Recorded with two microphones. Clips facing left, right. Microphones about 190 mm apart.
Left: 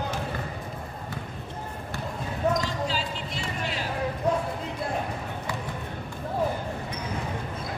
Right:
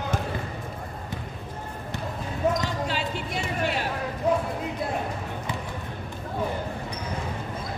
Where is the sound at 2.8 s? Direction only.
60° right (ahead or behind).